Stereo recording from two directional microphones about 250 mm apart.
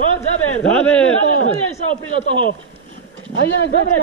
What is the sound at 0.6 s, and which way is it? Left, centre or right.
Speech, centre.